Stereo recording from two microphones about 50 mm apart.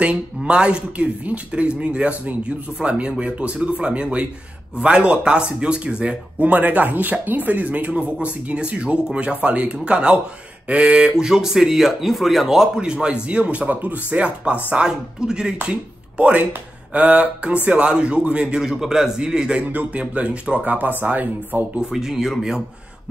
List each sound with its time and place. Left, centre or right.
0.0 s speech: right
6.4 s speech: right
14.9 s speech: centre
19.6 s speech: right
21.9 s speech: centre